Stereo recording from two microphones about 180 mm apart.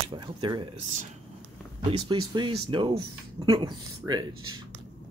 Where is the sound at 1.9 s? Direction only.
25° right (ahead or behind).